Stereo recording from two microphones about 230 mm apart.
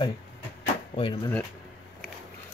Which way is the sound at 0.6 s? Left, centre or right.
Left.